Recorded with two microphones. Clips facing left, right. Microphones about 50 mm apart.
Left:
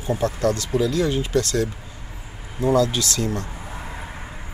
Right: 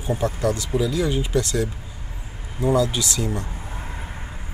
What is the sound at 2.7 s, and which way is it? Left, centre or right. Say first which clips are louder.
Speech: left 2 dB; right.